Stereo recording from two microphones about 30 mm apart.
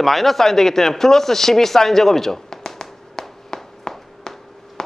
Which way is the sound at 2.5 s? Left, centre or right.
Left.